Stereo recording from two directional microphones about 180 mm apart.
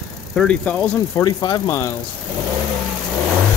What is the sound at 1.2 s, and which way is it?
Speech, 20° left (ahead or behind).